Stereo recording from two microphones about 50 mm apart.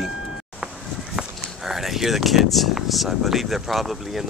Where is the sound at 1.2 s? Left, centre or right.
Centre.